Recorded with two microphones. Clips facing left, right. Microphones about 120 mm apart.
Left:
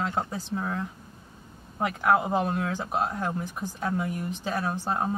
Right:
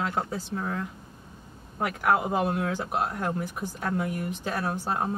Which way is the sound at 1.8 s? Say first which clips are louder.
Left 1 dB; centre (ahead or behind).